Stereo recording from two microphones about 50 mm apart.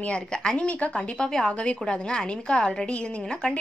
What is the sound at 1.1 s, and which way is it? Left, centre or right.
A woman's voice, centre.